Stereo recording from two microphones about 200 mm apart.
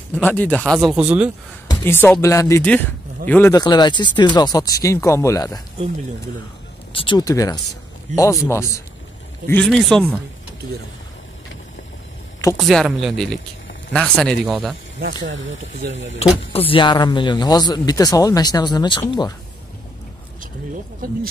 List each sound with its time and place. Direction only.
0.1 s speech: 10° left (ahead or behind)
0.8 s speech: 5° right (ahead or behind)
1.7 s speech: 10° left (ahead or behind)
3.6 s speech: 20° left (ahead or behind)
6.9 s speech: 25° left (ahead or behind)
9.5 s speech: 5° left (ahead or behind)
12.5 s speech: centre (ahead or behind)
15.0 s speech: 60° right (ahead or behind)
16.5 s speech: 25° left (ahead or behind)
21.0 s speech: 45° right (ahead or behind)